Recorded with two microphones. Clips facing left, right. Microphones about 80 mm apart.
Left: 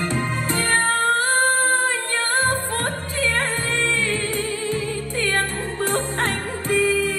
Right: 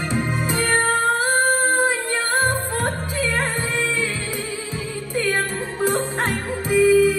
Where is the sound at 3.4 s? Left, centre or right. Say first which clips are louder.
Even; centre.